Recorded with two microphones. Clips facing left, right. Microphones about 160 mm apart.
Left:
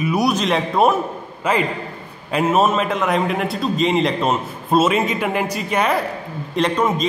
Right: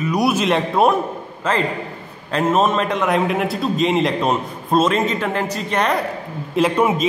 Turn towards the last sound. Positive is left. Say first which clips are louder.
# right 2 dB
turn(degrees=-5)  # may be behind; listen again after turning